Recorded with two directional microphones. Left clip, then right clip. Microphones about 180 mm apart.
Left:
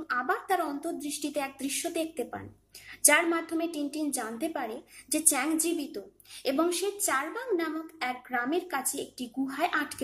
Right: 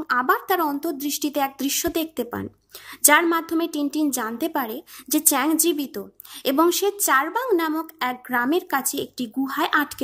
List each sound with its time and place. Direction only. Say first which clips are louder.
0.0 s a woman's voice: right 9 dB; 50° right (ahead or behind)